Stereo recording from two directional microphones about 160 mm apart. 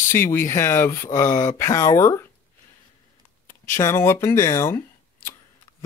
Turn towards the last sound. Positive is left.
turn(degrees=15)  # may be behind; listen again after turning